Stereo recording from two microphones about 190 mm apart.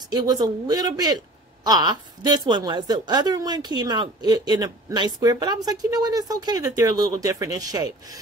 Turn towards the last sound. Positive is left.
turn(degrees=-20)  # may be behind; listen again after turning